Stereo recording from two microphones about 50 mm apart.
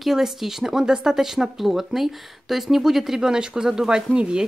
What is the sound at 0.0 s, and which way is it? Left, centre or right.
Speech, centre.